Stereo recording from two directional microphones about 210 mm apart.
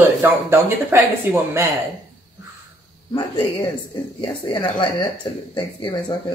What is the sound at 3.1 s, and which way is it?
Speech, 20° left (ahead or behind).